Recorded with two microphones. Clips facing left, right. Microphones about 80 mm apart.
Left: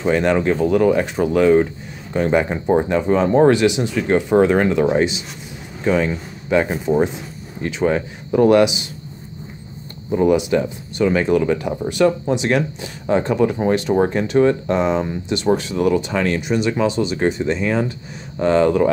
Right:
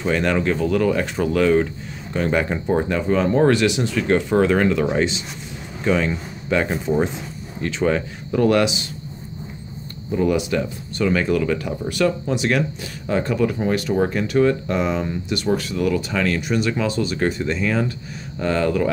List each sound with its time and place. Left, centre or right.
0.0 s speech: centre
10.1 s speech: left